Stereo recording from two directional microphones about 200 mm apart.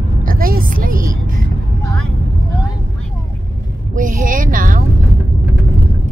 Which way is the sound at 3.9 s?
40° right (ahead or behind).